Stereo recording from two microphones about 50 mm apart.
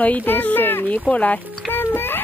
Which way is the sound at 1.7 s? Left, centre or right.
Left.